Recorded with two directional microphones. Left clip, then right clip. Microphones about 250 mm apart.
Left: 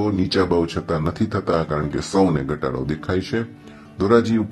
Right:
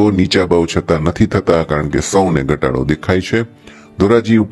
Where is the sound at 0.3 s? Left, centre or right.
Right.